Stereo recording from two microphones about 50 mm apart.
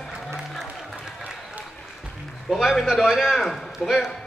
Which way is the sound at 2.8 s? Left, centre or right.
Centre.